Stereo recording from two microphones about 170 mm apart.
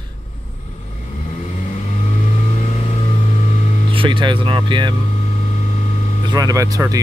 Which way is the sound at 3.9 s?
30° right (ahead or behind).